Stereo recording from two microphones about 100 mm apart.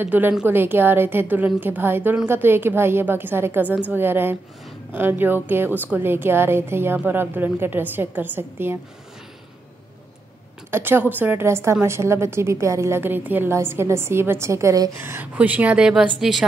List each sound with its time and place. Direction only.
0.0 s a woman's voice: 20° right (ahead or behind)
10.7 s a woman's voice: 20° right (ahead or behind)
15.9 s a woman's voice: 5° right (ahead or behind)